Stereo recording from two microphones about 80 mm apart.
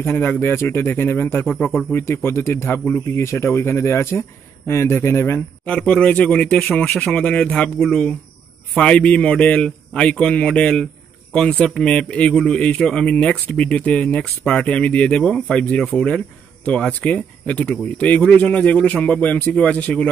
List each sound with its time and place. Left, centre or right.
0.0 s speech: left
5.8 s speech: centre
7.2 s speech: centre